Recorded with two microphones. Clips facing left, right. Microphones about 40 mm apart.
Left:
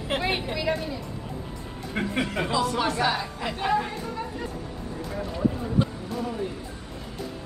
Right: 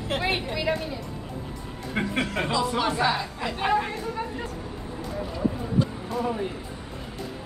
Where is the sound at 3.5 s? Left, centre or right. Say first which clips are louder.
Right 1 dB; centre.